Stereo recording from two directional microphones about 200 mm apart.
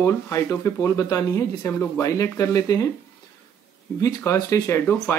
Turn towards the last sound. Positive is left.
turn(degrees=10)  # may be behind; listen again after turning